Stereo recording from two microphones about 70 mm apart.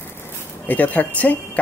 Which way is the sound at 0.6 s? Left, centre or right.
Left.